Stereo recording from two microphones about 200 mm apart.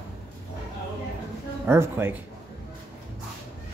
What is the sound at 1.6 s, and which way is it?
Speech, 10° right (ahead or behind).